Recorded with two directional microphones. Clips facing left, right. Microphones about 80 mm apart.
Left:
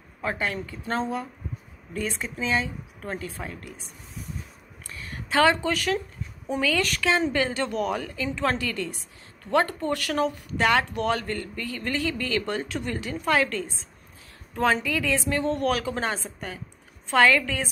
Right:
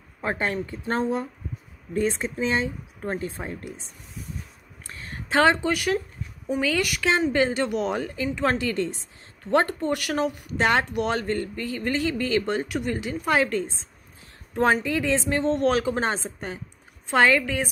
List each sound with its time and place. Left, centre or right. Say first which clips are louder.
0.2 s speech: right 2 dB; right
2.0 s speech: right 6 dB; right
4.8 s a sound: right 1 dB; right
6.6 s speech: even; centre